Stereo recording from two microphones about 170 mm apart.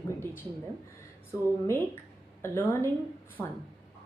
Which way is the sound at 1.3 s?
15° left (ahead or behind).